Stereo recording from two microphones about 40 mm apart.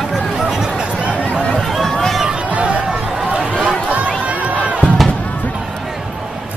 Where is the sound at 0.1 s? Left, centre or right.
Centre.